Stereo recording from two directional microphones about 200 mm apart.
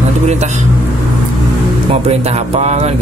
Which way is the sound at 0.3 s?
35° right (ahead or behind).